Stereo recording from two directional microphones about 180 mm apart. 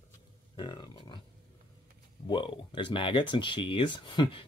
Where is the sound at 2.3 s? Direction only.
25° left (ahead or behind).